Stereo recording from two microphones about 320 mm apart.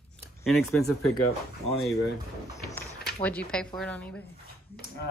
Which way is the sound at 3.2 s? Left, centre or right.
Centre.